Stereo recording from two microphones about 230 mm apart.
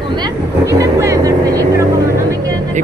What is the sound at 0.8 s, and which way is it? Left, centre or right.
Vehicle, centre.